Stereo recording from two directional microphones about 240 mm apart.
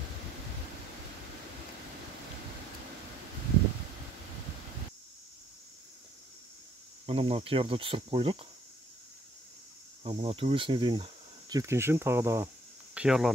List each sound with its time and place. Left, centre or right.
7.1 s speech: right
10.0 s speech: right; by 13.3 s centre